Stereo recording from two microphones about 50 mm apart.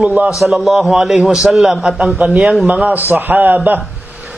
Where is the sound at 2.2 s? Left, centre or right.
Right.